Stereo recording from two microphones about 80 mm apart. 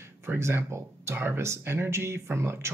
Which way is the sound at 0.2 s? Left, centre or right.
Right.